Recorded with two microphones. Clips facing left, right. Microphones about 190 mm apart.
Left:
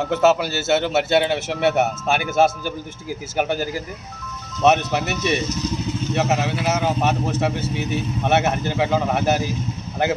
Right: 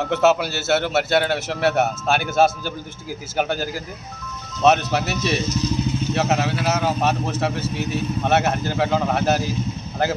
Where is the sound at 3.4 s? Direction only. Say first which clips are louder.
Left 1 dB; 15° left (ahead or behind).